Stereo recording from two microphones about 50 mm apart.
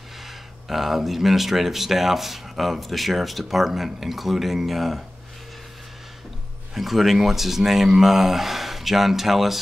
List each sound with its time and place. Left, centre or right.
0.2 s speech: centre
6.7 s speech: centre